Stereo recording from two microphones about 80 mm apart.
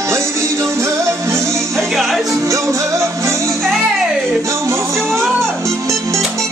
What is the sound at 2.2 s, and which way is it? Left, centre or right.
Music, right.